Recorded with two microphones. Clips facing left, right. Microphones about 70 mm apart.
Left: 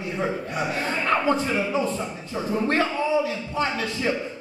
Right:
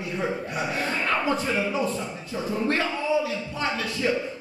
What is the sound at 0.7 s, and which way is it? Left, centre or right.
A man's voice, left.